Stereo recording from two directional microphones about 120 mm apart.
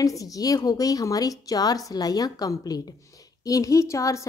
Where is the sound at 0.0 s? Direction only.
30° left (ahead or behind).